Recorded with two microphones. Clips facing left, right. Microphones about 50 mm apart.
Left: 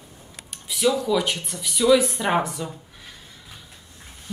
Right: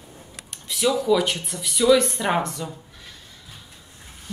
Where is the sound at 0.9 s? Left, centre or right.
Centre.